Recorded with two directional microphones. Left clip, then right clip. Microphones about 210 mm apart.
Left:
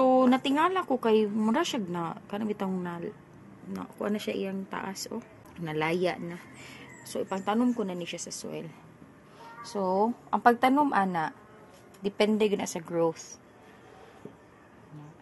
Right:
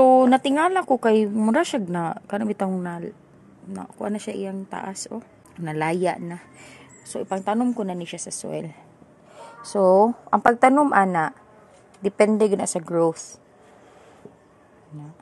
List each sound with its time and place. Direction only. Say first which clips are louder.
0.0 s speech: right 8 dB; 45° right (ahead or behind)
10.6 s a woman's voice: right 8 dB; 25° right (ahead or behind)
10.9 s speech: right 8 dB; 35° right (ahead or behind)
12.0 s a woman's voice: right 8 dB; 20° right (ahead or behind)
12.4 s speech: right 7 dB; 35° right (ahead or behind)